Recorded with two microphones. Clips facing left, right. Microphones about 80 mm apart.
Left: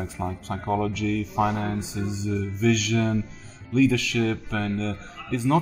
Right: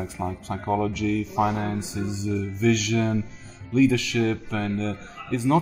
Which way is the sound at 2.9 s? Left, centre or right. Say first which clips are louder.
Even; right.